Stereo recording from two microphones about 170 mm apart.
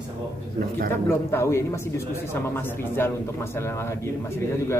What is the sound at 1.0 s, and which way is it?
Speech, 15° left (ahead or behind).